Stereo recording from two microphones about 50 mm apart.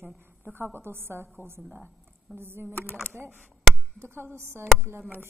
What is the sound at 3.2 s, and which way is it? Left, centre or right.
Speech, right.